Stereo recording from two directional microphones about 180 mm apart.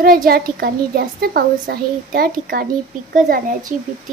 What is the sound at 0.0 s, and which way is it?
A child's voice, 50° right (ahead or behind).